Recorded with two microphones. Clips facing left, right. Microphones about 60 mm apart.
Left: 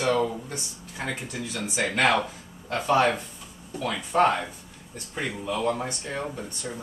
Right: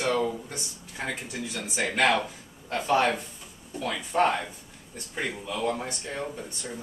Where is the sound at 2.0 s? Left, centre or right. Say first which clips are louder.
Left 1 dB; centre.